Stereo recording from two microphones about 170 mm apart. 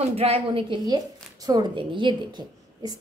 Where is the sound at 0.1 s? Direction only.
35° right (ahead or behind).